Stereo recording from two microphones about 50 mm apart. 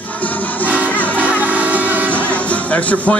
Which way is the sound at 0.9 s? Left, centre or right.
Left.